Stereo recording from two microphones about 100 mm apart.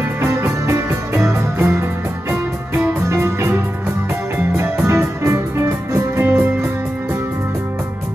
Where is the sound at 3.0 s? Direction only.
30° right (ahead or behind).